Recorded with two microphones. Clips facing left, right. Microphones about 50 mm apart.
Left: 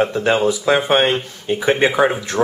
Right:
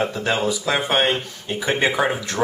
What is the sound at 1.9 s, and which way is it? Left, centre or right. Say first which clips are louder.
Speech: left 5 dB; centre.